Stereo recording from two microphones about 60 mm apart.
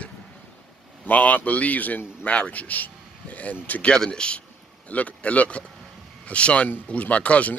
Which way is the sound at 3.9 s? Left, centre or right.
Centre.